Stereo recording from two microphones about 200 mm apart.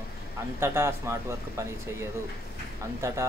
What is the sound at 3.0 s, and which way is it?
Speech, 15° right (ahead or behind).